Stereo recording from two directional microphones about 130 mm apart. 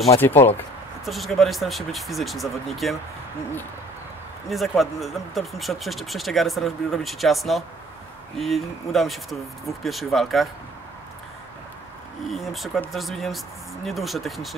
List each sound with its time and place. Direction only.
0.1 s speech: 15° left (ahead or behind)
1.0 s speech: centre (ahead or behind)
4.5 s speech: centre (ahead or behind)
12.3 s speech: centre (ahead or behind)